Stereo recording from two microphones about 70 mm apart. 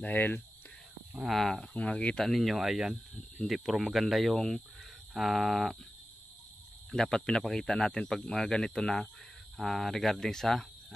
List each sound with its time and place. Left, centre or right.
0.0 s speech: left
1.2 s speech: centre
1.7 s speech: centre
2.2 s speech: centre
6.9 s speech: centre